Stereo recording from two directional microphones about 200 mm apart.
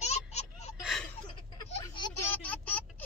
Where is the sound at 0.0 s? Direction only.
35° left (ahead or behind).